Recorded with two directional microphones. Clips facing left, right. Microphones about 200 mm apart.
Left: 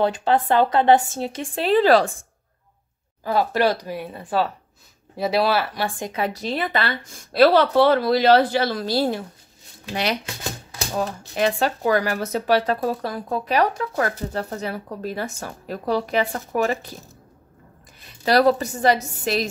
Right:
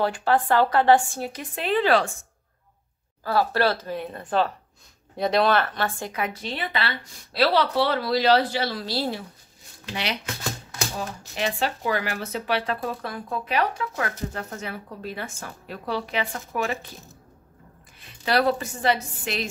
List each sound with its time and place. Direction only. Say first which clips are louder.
0.0 s speech: left 3 dB; 20° left (ahead or behind); by 2.1 s 35° left (ahead or behind)
3.3 s speech: left 2 dB; 15° left (ahead or behind)
6.1 s speech: left 5 dB; 35° left (ahead or behind)
11.0 s speech: left 9 dB; 45° left (ahead or behind)
18.0 s speech: left 5 dB; 40° left (ahead or behind)